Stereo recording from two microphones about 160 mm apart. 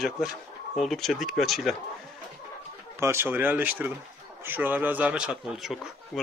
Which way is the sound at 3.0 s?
15° right (ahead or behind).